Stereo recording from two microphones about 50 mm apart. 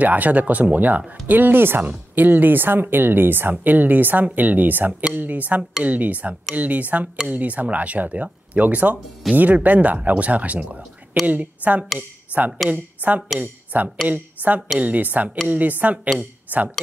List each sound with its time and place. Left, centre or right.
0.0 s speech: right